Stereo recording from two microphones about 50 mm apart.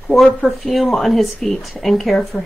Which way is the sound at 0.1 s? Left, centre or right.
Centre.